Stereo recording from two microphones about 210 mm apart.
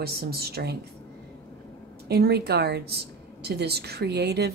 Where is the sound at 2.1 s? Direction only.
50° right (ahead or behind).